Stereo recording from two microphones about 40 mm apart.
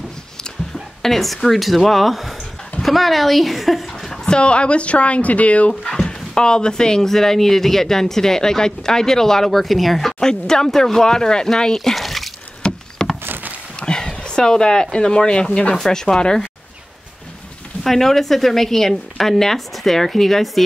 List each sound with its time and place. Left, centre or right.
1.0 s a woman's voice: centre
4.1 s a sound: centre
4.4 s speech: left
5.7 s speech: centre
12.6 s a sound: left
13.2 s a sound: right
13.7 s speech: left
15.7 s speech: centre
17.8 s speech: centre